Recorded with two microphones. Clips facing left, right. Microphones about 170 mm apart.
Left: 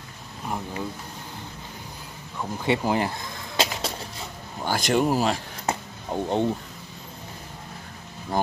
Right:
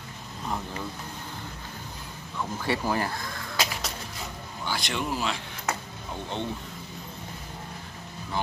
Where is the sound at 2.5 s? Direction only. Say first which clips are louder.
Left 5 dB; 20° left (ahead or behind).